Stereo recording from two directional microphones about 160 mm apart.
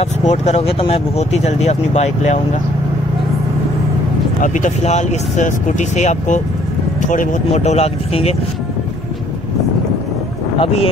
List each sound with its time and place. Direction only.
0.0 s speech: 45° left (ahead or behind)
4.4 s speech: 50° left (ahead or behind)